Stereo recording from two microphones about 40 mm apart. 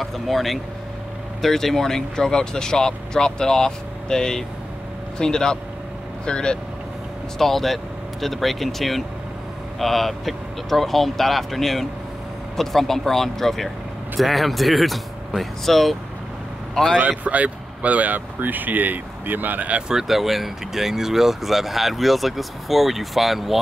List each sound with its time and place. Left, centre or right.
0.0 s speech: centre; by 6.6 s left
7.3 s speech: centre
17.2 s speech: right
19.9 s speech: centre